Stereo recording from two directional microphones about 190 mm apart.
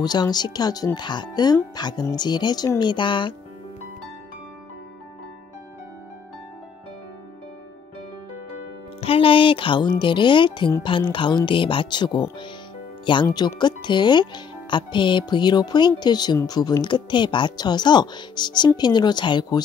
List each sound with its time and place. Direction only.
0.0 s speech: 20° left (ahead or behind)
9.0 s speech: 30° left (ahead or behind)